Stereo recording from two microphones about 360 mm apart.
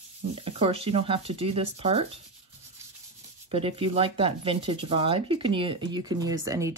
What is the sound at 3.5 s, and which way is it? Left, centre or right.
Speech, centre.